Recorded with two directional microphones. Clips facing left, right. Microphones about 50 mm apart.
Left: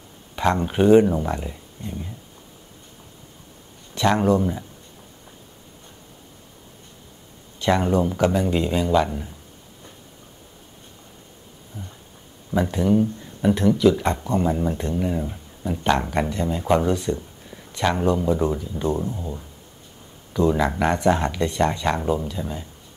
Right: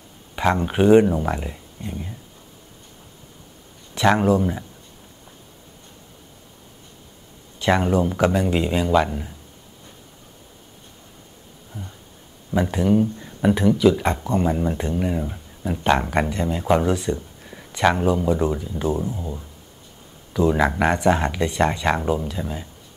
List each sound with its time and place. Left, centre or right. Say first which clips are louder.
0.4 s speech: right 1 dB; centre
3.9 s speech: right 1 dB; centre
7.5 s speech: right 1 dB; centre
12.4 s speech: right 1 dB; centre
20.5 s speech: right 2 dB; centre